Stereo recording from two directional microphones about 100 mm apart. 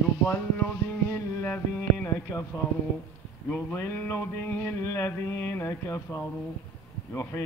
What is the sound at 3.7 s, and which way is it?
Music, 25° left (ahead or behind).